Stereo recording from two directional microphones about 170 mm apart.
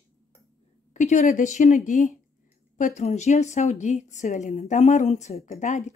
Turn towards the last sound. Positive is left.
turn(degrees=45)  # may be behind; listen again after turning